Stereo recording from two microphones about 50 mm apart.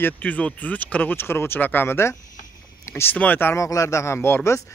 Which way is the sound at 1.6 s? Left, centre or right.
Left.